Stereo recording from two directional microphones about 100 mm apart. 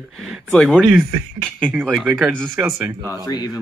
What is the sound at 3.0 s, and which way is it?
Speech, 40° left (ahead or behind).